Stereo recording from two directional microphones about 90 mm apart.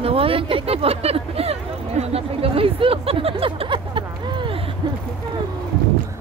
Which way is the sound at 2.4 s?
90° right.